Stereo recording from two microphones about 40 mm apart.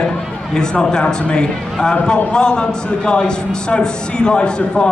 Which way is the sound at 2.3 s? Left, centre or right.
Left.